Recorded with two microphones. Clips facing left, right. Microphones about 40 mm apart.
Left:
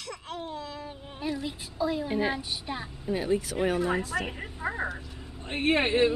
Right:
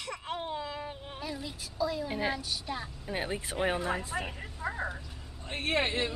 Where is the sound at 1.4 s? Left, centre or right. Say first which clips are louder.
Even; left.